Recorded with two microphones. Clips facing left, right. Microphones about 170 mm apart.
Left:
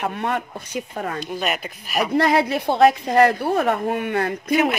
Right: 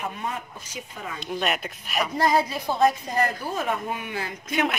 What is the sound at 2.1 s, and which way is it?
A woman's voice, 70° left (ahead or behind).